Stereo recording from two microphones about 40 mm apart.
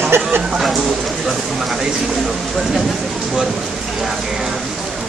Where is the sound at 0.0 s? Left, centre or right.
Right.